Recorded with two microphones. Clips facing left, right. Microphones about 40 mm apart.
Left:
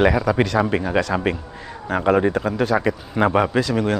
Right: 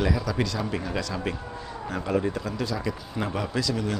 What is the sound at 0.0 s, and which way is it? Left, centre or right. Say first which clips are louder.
A man's voice: left 9 dB; left.